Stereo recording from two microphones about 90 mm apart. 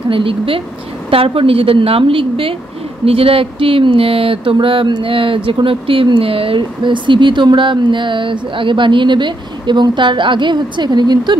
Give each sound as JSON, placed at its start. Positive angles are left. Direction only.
{"t": 0.1, "sound": "a woman's voice", "side_deg": -80}